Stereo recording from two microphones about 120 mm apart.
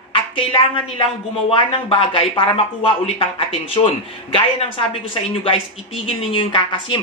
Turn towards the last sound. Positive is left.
turn(degrees=45)  # may be behind; listen again after turning